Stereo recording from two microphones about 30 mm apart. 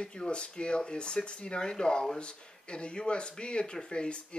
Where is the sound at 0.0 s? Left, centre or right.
Left.